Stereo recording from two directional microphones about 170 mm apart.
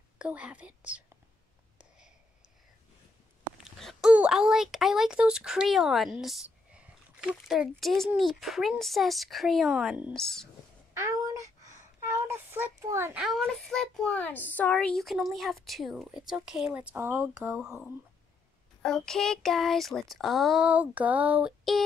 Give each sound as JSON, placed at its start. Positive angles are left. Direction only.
{"t": 0.2, "sound": "speech", "side_deg": -5}
{"t": 3.6, "sound": "a child's voice", "side_deg": 0}
{"t": 11.0, "sound": "a sound", "side_deg": -20}
{"t": 13.2, "sound": "a child's voice", "side_deg": 0}
{"t": 17.6, "sound": "a child's voice", "side_deg": -5}